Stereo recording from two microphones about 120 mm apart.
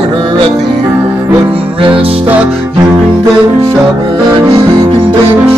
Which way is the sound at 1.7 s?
50° right (ahead or behind).